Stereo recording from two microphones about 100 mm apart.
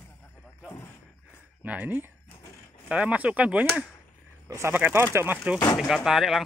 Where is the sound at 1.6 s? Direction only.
15° right (ahead or behind).